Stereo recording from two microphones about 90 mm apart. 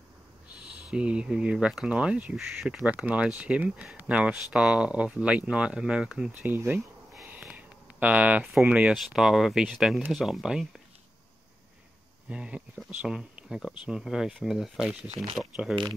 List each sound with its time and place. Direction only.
0.5 s speech: 15° right (ahead or behind)
6.4 s speech: 20° right (ahead or behind)
7.2 s a sound: 15° right (ahead or behind)
8.5 s speech: 15° right (ahead or behind)
8.9 s speech: 5° right (ahead or behind)
12.3 s speech: 15° right (ahead or behind)